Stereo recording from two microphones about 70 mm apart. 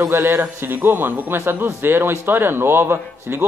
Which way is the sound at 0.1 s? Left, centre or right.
Right.